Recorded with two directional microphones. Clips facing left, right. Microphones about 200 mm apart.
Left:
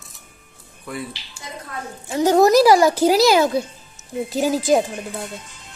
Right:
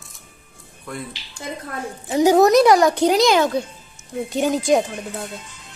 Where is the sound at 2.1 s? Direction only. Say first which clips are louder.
Right 2 dB; 15° right (ahead or behind).